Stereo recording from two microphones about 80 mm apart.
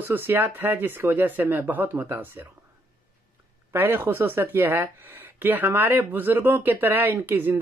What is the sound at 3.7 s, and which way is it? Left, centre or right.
Speech, right.